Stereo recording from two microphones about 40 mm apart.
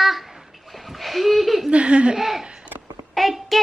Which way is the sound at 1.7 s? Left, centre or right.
Right.